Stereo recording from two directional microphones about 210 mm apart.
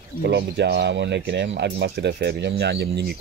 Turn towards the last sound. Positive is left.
turn(degrees=-55)  # may be behind; listen again after turning